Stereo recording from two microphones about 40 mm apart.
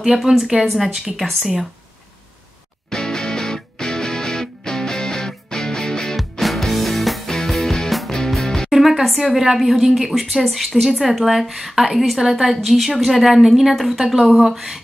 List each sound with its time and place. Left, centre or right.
0.0 s a woman's voice: centre
2.9 s music: centre
6.4 s music: centre
8.7 s a woman's voice: centre